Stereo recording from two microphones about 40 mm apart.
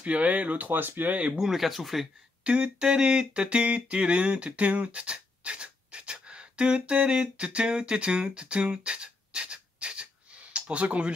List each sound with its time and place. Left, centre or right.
0.0 s speech: right
1.4 s speech: centre
2.4 s a sound: right
10.5 s speech: right